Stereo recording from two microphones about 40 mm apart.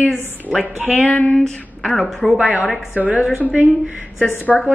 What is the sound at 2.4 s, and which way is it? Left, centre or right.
Speech, right.